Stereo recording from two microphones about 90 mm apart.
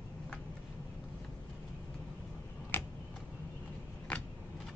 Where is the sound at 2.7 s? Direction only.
20° left (ahead or behind).